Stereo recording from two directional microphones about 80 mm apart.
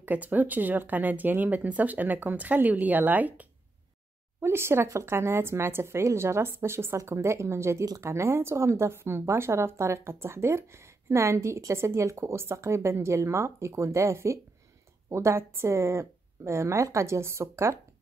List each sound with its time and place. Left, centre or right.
0.0 s speech: right
4.4 s speech: right